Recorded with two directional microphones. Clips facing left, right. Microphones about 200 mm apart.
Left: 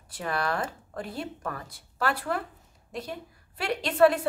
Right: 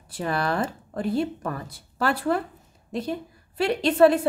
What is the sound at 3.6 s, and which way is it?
Speech, 25° right (ahead or behind).